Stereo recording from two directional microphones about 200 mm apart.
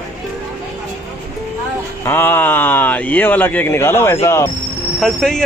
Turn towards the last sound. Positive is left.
turn(degrees=5)  # may be behind; listen again after turning